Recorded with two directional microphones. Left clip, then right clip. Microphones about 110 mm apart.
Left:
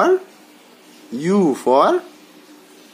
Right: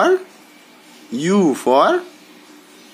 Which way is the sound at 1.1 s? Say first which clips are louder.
Right 1 dB; 10° left (ahead or behind).